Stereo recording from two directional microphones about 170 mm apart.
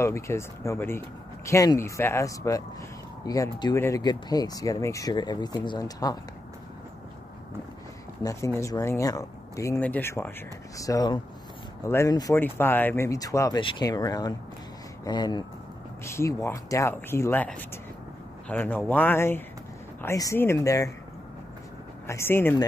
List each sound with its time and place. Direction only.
0.0 s speech: 15° left (ahead or behind)
8.2 s speech: 20° left (ahead or behind)
22.0 s speech: 15° left (ahead or behind)